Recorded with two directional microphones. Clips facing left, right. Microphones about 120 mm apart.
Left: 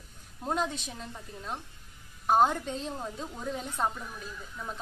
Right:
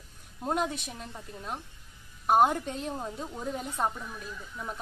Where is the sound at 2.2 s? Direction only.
10° right (ahead or behind).